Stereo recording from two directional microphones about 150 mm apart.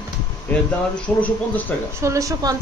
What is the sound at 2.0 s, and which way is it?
Speech, 20° right (ahead or behind).